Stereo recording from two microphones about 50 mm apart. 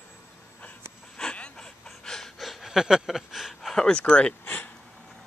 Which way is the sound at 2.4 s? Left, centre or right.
Centre.